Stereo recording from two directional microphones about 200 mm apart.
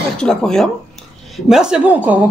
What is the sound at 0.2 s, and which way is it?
A man's voice, 5° left (ahead or behind).